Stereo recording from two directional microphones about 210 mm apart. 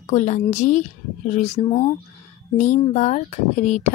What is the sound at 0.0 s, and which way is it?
Speech, 35° left (ahead or behind).